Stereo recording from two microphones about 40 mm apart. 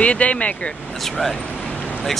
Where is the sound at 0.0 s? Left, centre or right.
Left.